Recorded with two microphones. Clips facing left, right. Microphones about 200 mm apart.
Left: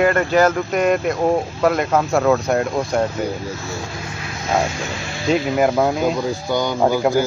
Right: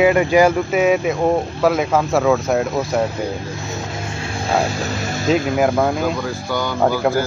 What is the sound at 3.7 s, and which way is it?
Vehicle, 30° right (ahead or behind).